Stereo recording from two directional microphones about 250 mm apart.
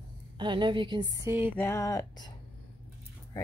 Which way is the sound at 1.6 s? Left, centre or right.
Centre.